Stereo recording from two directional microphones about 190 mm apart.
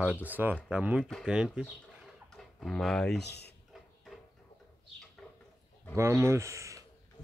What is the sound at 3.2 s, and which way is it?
Speech, 60° left (ahead or behind).